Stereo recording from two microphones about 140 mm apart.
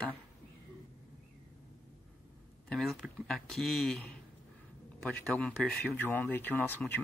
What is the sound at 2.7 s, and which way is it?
Speech, centre (ahead or behind).